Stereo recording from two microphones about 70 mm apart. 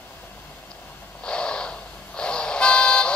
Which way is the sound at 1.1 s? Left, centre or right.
Centre.